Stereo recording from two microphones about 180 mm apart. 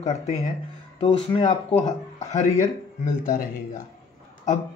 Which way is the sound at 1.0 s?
30° left (ahead or behind).